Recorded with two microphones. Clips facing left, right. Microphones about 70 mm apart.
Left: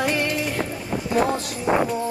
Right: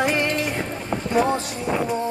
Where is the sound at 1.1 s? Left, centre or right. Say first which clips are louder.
Right 1 dB; centre.